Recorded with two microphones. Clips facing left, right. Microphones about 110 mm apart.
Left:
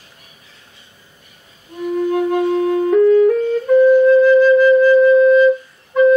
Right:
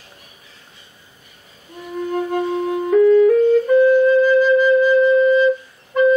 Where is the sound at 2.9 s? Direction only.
Centre (ahead or behind).